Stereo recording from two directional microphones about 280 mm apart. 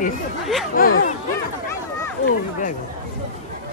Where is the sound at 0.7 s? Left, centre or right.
Left.